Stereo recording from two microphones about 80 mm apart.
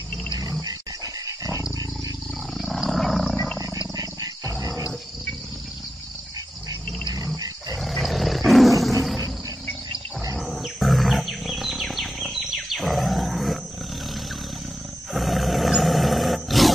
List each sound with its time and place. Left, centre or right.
0.5 s dog: right
2.5 s wild animals: centre
3.9 s wild animals: right
7.7 s roar: centre
10.3 s wild animals: centre
15.1 s roar: centre